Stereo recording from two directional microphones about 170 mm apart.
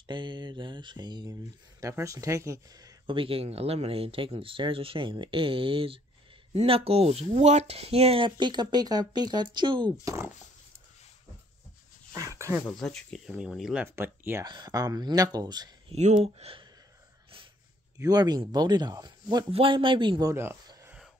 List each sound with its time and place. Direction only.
0.0 s speech: 25° right (ahead or behind)
10.0 s speech: 15° right (ahead or behind)
12.1 s a sound: 20° right (ahead or behind)
12.6 s speech: 5° left (ahead or behind); by 14.4 s 15° right (ahead or behind)
14.4 s speech: 25° right (ahead or behind)
15.9 s speech: 40° right (ahead or behind)
17.9 s speech: 20° right (ahead or behind)